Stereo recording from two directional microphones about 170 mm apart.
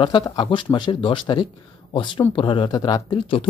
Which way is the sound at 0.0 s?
30° left (ahead or behind).